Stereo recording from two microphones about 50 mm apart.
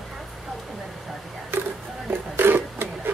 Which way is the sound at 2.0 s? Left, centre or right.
Right.